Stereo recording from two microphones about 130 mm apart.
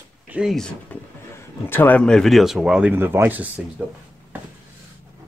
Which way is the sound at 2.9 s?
15° right (ahead or behind).